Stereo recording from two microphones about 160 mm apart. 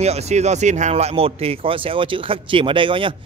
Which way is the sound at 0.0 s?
40° right (ahead or behind).